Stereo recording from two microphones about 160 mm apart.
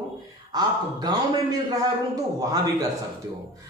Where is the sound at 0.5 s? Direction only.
25° right (ahead or behind).